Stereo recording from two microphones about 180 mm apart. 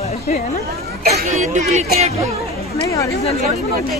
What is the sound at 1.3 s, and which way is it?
Speech, 40° right (ahead or behind).